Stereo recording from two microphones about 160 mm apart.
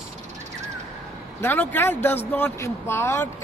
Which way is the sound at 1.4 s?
15° left (ahead or behind).